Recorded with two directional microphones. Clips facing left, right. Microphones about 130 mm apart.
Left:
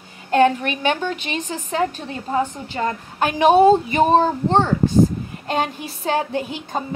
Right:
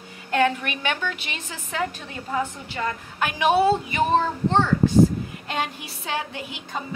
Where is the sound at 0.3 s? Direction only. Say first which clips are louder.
Left 6 dB; 35° left (ahead or behind).